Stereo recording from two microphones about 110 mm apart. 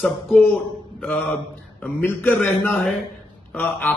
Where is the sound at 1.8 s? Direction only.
20° left (ahead or behind).